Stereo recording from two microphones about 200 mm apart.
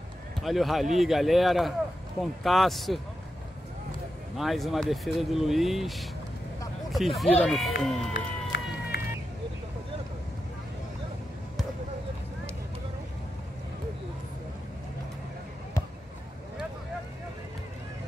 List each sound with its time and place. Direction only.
0.4 s speech: centre (ahead or behind)
4.4 s speech: centre (ahead or behind)
8.1 s run: 55° left (ahead or behind)